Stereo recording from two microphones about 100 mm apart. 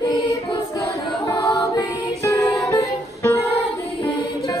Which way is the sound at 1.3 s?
35° left (ahead or behind).